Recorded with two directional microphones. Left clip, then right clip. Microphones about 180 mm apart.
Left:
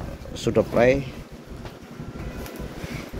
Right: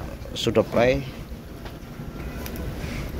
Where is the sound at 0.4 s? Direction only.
15° left (ahead or behind).